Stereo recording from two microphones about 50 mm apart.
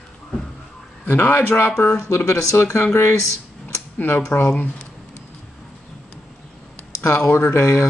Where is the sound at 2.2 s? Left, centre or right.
Left.